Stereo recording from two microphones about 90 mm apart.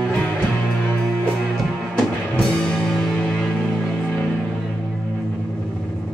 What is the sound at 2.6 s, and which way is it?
Music, 10° left (ahead or behind).